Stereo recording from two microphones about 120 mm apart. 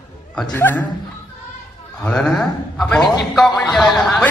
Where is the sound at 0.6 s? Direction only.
15° left (ahead or behind).